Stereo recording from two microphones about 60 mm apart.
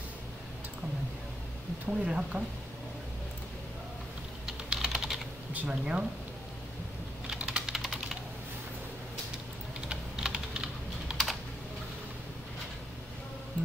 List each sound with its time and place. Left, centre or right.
1.9 s speech: centre
4.5 s typing: centre
5.7 s speech: centre
7.3 s typing: centre
9.8 s typing: centre